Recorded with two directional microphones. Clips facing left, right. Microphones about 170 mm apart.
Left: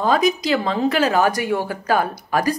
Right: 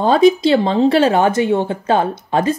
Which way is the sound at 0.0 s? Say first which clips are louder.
Right 7 dB; 30° right (ahead or behind).